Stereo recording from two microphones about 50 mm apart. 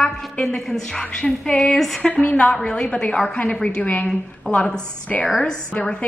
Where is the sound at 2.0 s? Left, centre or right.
Left.